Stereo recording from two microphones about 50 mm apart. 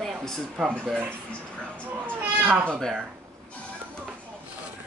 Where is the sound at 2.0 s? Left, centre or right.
Right.